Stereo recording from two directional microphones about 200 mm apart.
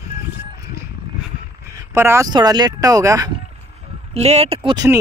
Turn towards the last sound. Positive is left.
turn(degrees=-20)  # may be behind; listen again after turning